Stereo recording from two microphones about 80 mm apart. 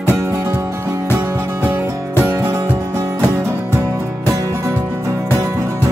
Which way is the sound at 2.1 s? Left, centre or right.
Right.